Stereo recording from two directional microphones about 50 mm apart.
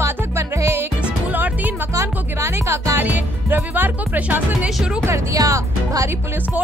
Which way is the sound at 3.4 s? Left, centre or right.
Right.